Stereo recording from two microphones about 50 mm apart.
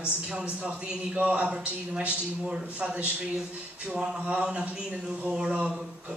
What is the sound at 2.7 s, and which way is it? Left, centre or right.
A man's voice, right.